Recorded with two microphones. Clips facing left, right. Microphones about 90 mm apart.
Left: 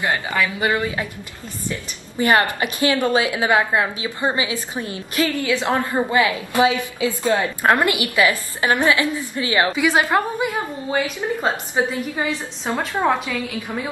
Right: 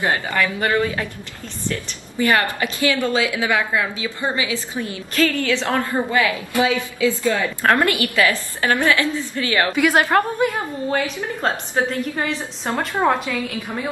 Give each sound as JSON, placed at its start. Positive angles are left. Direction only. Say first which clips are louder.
{"t": 0.3, "sound": "a woman's voice", "louder": "right 1 dB", "side_deg": 10}
{"t": 1.7, "sound": "a woman's voice", "louder": "right 3 dB", "side_deg": 25}
{"t": 10.1, "sound": "a woman's voice", "louder": "right 2 dB", "side_deg": 10}
{"t": 11.9, "sound": "a woman's voice", "louder": "even", "side_deg": 5}
{"t": 13.0, "sound": "a woman's voice", "louder": "right 1 dB", "side_deg": 0}